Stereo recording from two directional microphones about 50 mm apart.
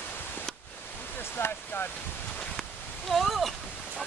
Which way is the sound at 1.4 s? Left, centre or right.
Left.